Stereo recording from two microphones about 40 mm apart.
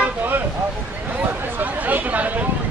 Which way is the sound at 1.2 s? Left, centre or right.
Right.